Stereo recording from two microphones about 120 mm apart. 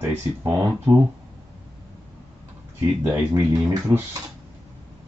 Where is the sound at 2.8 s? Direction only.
20° right (ahead or behind).